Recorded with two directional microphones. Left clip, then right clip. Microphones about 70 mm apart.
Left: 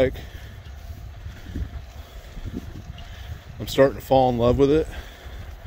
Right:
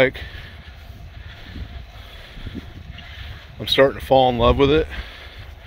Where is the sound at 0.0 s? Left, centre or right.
Left.